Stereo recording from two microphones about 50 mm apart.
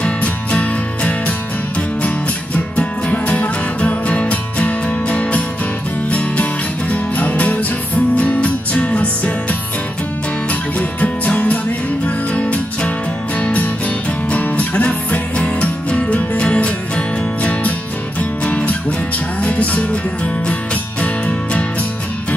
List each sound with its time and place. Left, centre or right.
0.0 s music: left
21.0 s music: left